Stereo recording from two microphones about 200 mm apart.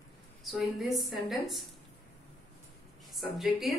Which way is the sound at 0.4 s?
Centre (ahead or behind).